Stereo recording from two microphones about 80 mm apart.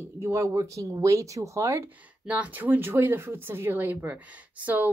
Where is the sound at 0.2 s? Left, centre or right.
Right.